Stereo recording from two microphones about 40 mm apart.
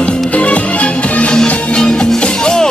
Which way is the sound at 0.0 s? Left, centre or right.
Left.